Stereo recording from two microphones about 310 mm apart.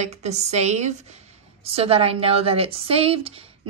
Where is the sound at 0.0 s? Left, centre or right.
Right.